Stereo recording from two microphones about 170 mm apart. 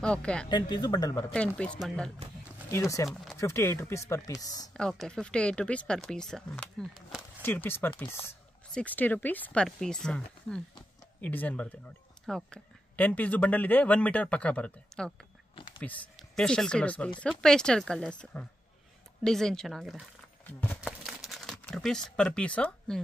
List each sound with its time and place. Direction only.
0.0 s speech: 5° left (ahead or behind)
0.5 s speech: 25° left (ahead or behind)
1.1 s speech: 5° left (ahead or behind)
2.7 s speech: 20° left (ahead or behind)
4.7 s speech: 5° left (ahead or behind)
7.4 s speech: 10° left (ahead or behind)
15.5 s whispering: 30° left (ahead or behind)
15.8 s speech: 5° left (ahead or behind)
20.8 s crumpling: centre (ahead or behind)